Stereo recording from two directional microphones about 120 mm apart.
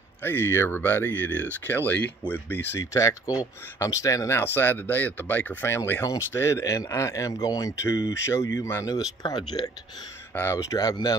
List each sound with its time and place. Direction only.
0.2 s speech: 20° left (ahead or behind)
2.8 s speech: 25° left (ahead or behind)
10.3 s speech: 20° left (ahead or behind)